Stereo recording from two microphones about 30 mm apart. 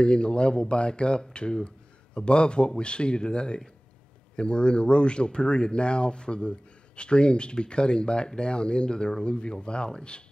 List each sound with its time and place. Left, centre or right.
0.0 s speech: left